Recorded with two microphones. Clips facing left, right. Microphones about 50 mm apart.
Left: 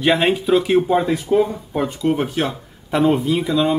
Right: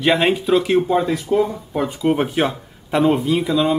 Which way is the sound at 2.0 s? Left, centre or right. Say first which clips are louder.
Right 3 dB; centre.